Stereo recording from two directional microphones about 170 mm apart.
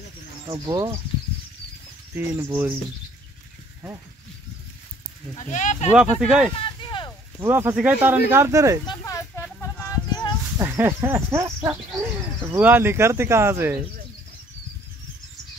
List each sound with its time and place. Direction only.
0.5 s speech: 25° right (ahead or behind)
2.1 s speech: 10° right (ahead or behind)
5.3 s speech: 45° left (ahead or behind)
5.9 s speech: 5° right (ahead or behind)
6.5 s a sound: 30° left (ahead or behind)
7.3 s speech: 15° right (ahead or behind)
8.8 s a sound: 20° left (ahead or behind)
10.6 s speech: 15° right (ahead or behind)